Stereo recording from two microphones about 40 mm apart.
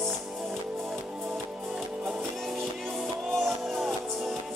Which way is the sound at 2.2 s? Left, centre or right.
Centre.